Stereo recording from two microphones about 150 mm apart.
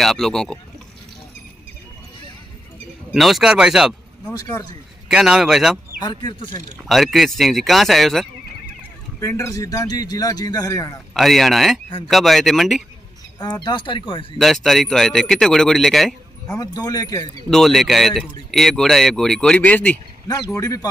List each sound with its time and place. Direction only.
0.0 s a man's voice: centre (ahead or behind)
3.1 s a man's voice: centre (ahead or behind)
4.3 s a man's voice: 25° left (ahead or behind)
5.0 s a man's voice: 5° right (ahead or behind)
6.0 s a man's voice: 30° left (ahead or behind)
6.8 s a man's voice: centre (ahead or behind)
9.2 s a man's voice: 20° left (ahead or behind)
11.1 s a man's voice: centre (ahead or behind)
13.4 s speech: 30° left (ahead or behind)
14.4 s a man's voice: centre (ahead or behind)
16.5 s a man's voice: 25° left (ahead or behind)
17.5 s a man's voice: centre (ahead or behind)
20.2 s a man's voice: 20° left (ahead or behind)